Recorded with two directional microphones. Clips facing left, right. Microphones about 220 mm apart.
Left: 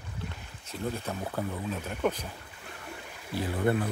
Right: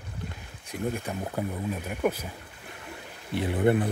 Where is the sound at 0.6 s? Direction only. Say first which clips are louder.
Right 3 dB; 15° right (ahead or behind).